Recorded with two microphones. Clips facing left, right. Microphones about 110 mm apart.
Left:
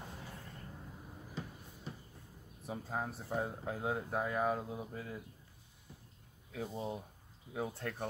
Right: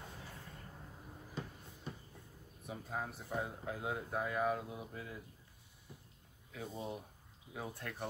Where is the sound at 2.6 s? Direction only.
30° left (ahead or behind).